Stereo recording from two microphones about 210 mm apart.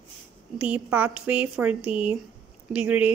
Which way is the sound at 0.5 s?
5° right (ahead or behind).